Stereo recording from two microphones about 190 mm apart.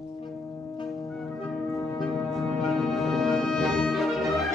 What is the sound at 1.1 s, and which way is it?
Music, 5° left (ahead or behind).